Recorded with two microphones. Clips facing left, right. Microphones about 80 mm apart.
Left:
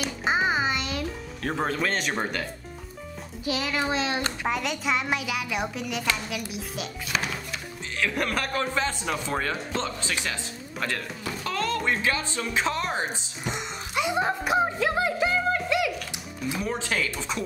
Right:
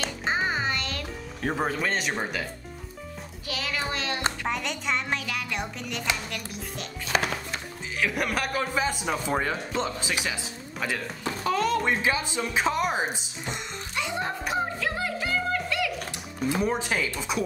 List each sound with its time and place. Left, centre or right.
0.0 s music: centre
1.4 s speech: centre
3.4 s a child's voice: centre
4.5 s speech: centre
7.1 s music: right
8.0 s speech: centre
13.5 s music: centre
16.6 s speech: centre